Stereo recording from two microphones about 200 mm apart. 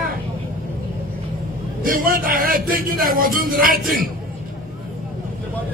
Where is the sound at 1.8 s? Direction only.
45° right (ahead or behind).